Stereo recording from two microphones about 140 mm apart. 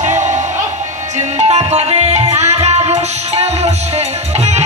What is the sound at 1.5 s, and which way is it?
Music, 50° right (ahead or behind).